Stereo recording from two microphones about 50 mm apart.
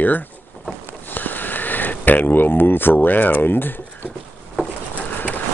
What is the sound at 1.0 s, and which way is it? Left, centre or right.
Sniff, left.